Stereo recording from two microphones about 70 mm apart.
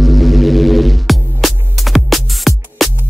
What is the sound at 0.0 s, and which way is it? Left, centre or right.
Music, centre.